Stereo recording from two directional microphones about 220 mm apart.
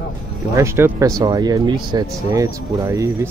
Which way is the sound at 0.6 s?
10° right (ahead or behind).